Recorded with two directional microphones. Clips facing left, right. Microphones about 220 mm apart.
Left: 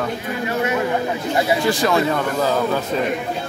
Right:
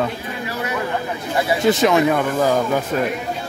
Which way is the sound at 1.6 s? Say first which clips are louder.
Right 3 dB; 20° right (ahead or behind).